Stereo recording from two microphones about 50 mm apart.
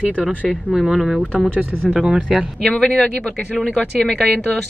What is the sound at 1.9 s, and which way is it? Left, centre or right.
Speech, right.